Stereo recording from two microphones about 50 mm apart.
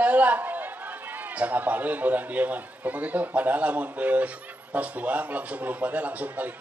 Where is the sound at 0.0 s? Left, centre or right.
Right.